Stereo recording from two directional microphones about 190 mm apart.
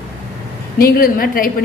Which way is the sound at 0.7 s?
50° left (ahead or behind).